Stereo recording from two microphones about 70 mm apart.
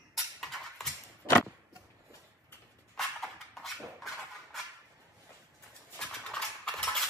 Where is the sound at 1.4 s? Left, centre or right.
Left.